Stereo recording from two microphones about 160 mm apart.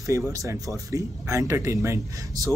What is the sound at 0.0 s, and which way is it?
Speech, 20° right (ahead or behind).